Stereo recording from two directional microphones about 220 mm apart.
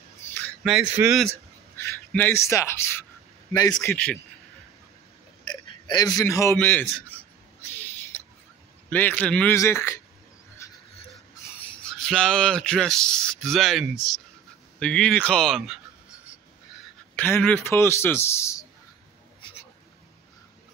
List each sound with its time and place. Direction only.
0.3 s a sound: 5° left (ahead or behind)
1.8 s a man's voice: 10° left (ahead or behind)
3.9 s speech: 5° left (ahead or behind)
5.4 s a man's voice: 20° left (ahead or behind)
8.9 s a man's voice: 10° left (ahead or behind)
10.6 s a sound: 15° left (ahead or behind)
11.6 s speech: 5° left (ahead or behind)
17.1 s a man's voice: 5° left (ahead or behind)